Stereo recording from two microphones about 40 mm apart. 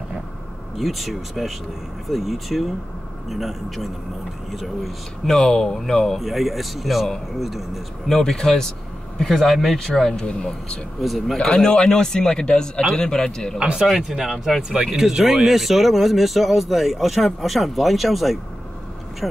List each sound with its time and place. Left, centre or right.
0.7 s speech: centre
5.2 s a man's voice: centre
6.1 s speech: centre
8.1 s a man's voice: centre
9.3 s speech: centre
9.8 s a man's voice: centre
11.0 s speech: centre
11.4 s a man's voice: centre
13.9 s speech: centre
14.7 s speech: right
15.0 s speech: centre